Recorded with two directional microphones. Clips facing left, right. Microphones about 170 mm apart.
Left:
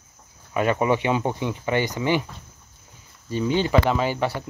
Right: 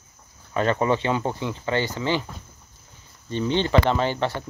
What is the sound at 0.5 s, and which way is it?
Speech, 10° left (ahead or behind).